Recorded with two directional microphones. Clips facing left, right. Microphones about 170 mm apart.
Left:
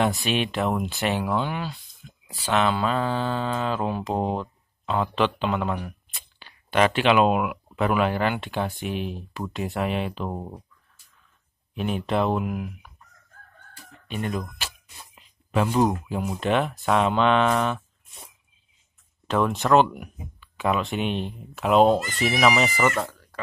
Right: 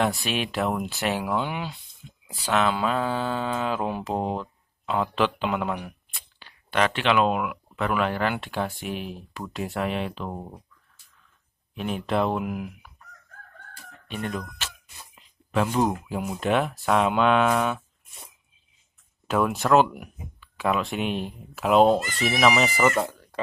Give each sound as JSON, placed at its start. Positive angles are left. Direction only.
{"t": 0.0, "sound": "mantra", "side_deg": 0}
{"t": 2.4, "sound": "mantra", "side_deg": -5}
{"t": 6.4, "sound": "a sound", "side_deg": 5}
{"t": 7.2, "sound": "mantra", "side_deg": 15}
{"t": 11.7, "sound": "mantra", "side_deg": 0}
{"t": 14.0, "sound": "speech", "side_deg": 0}
{"t": 14.6, "sound": "speech", "side_deg": 10}
{"t": 15.5, "sound": "mantra", "side_deg": 0}
{"t": 19.2, "sound": "mantra", "side_deg": -5}
{"t": 22.9, "sound": "cat", "side_deg": -20}